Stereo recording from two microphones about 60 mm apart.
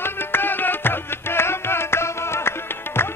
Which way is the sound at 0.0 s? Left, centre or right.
Left.